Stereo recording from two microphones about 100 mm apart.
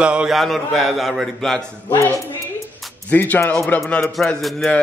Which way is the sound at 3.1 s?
15° left (ahead or behind).